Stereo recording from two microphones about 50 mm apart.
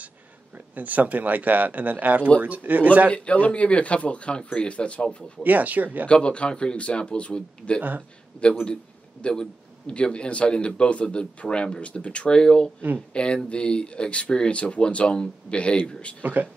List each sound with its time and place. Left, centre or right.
0.7 s a man's voice: right
3.1 s a man's voice: left
5.4 s a man's voice: right
6.0 s a man's voice: left
16.2 s a man's voice: right